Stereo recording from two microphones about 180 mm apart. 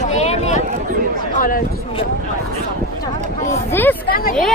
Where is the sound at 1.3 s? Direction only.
50° left (ahead or behind).